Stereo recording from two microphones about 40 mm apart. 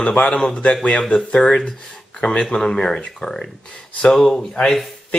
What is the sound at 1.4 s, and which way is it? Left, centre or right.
Speech, centre.